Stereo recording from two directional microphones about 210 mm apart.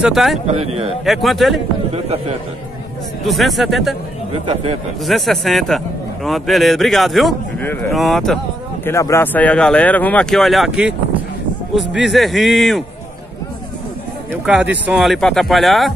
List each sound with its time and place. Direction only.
0.0 s speech: centre (ahead or behind)
0.5 s a man's voice: 30° right (ahead or behind)
1.0 s speech: centre (ahead or behind)
3.3 s speech: centre (ahead or behind)
4.3 s a man's voice: 30° right (ahead or behind)
5.0 s speech: centre (ahead or behind)
8.8 s speech: 15° left (ahead or behind); by 11.0 s 5° right (ahead or behind)
12.1 s speech: centre (ahead or behind)
14.3 s speech: 5° right (ahead or behind)